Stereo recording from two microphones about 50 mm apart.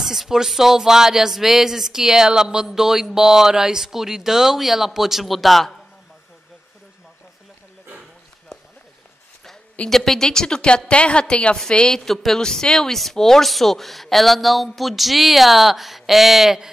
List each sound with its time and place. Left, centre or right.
0.0 s a sound: centre
9.8 s a woman's voice: centre
11.9 s speech: centre